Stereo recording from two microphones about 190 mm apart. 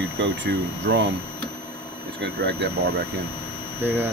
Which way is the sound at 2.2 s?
60° right (ahead or behind).